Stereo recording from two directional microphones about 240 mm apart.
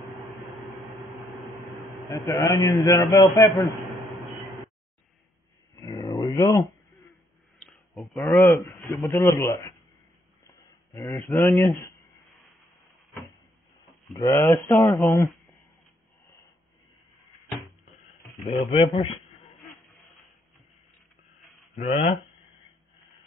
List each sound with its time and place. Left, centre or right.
2.0 s speech: centre
3.5 s a sound: centre
5.8 s dog: centre
7.5 s a sound: centre
8.9 s speech: centre
10.4 s a sound: centre
14.1 s speech: centre
18.6 s speech: centre
21.9 s speech: left